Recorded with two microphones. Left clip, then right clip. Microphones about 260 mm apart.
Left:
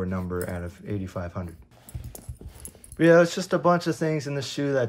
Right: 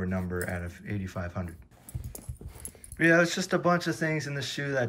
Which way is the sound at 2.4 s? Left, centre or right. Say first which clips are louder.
Left 2 dB; centre.